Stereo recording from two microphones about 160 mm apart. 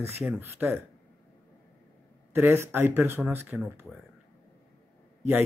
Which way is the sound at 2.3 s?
15° right (ahead or behind).